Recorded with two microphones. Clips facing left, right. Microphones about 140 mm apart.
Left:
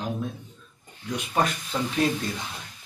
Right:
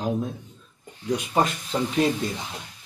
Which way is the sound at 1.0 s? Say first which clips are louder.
Right 3 dB; 25° right (ahead or behind).